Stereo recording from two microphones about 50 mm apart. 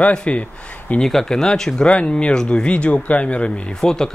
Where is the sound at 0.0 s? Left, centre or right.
Left.